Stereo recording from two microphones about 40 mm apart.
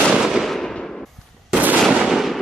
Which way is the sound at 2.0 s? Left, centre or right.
Centre.